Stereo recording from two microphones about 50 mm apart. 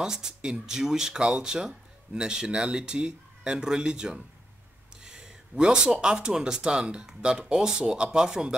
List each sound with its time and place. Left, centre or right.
0.0 s speech: centre
5.0 s a sound: centre
5.9 s speech: centre